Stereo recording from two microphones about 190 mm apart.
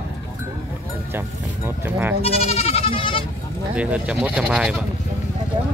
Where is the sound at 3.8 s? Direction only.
5° right (ahead or behind).